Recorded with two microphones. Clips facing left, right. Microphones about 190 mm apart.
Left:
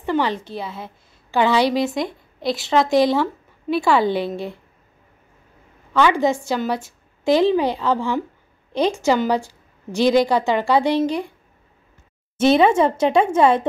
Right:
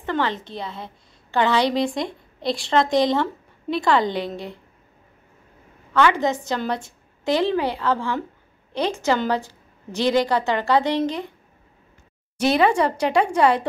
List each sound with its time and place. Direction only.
0.0 s a woman's voice: 10° left (ahead or behind)
5.9 s a woman's voice: 10° left (ahead or behind)
12.4 s speech: 25° left (ahead or behind)